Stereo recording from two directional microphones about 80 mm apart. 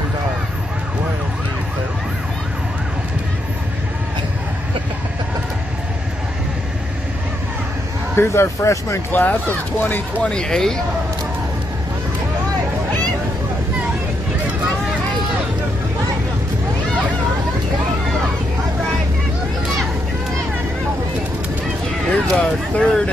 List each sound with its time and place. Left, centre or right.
8.2 s speech: left
9.1 s speech: left
10.2 s speech: centre
22.1 s speech: centre